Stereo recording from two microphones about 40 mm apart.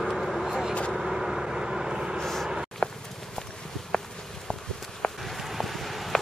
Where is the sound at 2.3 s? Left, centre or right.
Centre.